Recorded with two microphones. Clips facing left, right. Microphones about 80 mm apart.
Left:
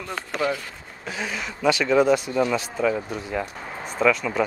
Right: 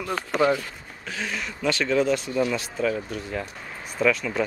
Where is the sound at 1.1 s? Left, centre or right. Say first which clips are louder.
Left 1 dB; centre.